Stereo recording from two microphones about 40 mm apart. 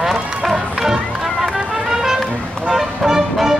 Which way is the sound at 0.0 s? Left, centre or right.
Centre.